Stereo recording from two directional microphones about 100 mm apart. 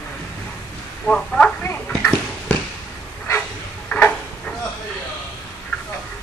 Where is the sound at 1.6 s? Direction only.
20° left (ahead or behind).